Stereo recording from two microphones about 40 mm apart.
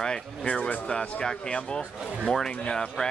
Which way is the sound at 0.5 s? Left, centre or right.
Left.